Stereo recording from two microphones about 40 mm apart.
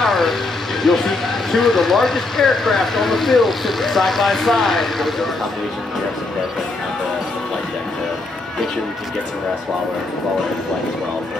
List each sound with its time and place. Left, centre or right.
0.0 s vehicle: centre
0.8 s speech: centre